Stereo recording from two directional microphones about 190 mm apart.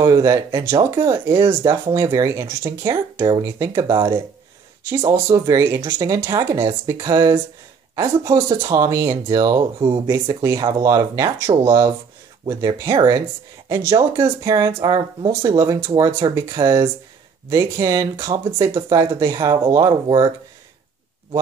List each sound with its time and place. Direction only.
0.0 s speech: 15° right (ahead or behind)
4.8 s speech: 10° right (ahead or behind)